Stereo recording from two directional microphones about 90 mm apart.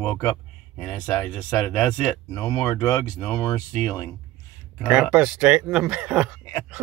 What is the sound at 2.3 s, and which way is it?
Speech, 30° left (ahead or behind).